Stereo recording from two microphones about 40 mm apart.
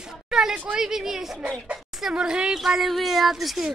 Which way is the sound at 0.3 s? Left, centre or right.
Centre.